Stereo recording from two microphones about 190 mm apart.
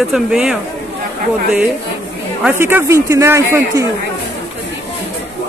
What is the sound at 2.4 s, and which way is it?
Speech, 10° right (ahead or behind).